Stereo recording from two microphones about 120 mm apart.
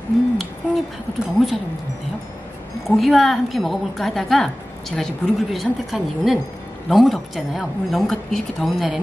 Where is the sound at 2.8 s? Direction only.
Centre (ahead or behind).